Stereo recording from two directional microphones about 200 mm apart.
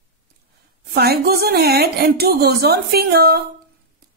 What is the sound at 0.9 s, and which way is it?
Speech, 50° right (ahead or behind).